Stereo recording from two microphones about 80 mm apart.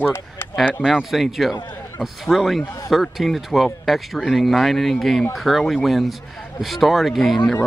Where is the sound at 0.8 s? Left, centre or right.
Centre.